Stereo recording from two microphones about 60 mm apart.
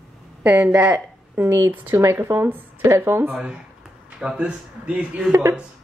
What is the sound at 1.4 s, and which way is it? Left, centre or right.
A woman's voice, right.